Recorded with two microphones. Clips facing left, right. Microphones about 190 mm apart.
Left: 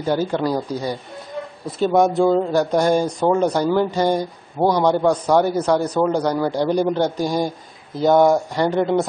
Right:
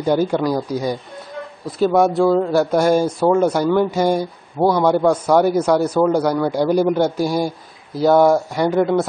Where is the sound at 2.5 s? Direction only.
10° right (ahead or behind).